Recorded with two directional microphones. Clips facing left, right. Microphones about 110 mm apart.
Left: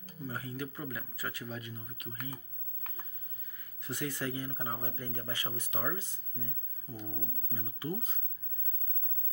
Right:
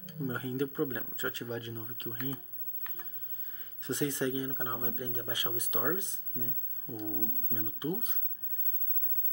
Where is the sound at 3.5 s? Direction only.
25° right (ahead or behind).